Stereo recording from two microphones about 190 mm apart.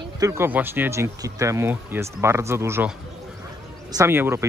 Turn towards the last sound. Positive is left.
turn(degrees=-10)  # may be behind; listen again after turning